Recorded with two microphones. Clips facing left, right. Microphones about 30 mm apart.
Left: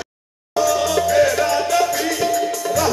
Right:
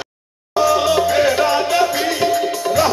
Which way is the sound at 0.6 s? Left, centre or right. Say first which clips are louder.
Right 3 dB; right.